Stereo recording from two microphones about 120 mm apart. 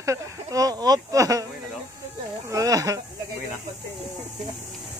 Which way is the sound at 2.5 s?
30° right (ahead or behind).